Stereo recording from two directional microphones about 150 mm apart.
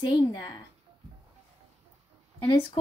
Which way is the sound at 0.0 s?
25° left (ahead or behind).